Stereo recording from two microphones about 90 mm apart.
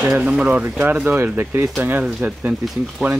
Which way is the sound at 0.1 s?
10° right (ahead or behind).